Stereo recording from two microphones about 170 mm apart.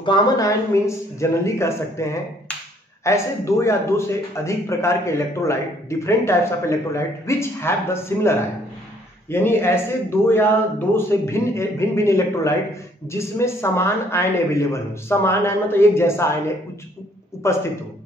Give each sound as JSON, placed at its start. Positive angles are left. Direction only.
{"t": 0.0, "sound": "a man's voice", "side_deg": 25}